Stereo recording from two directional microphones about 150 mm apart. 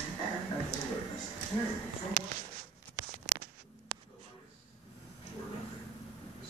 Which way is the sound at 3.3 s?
60° right (ahead or behind).